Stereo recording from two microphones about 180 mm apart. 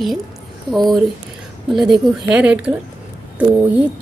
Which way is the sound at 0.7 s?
Centre (ahead or behind).